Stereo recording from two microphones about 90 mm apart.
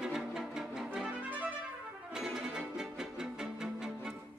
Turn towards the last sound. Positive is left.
turn(degrees=-5)  # may be behind; listen again after turning